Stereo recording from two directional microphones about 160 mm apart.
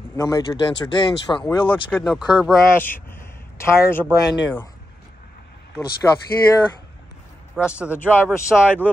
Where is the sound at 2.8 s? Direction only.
15° left (ahead or behind).